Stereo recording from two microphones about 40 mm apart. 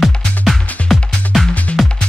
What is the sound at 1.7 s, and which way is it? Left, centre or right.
Music, left.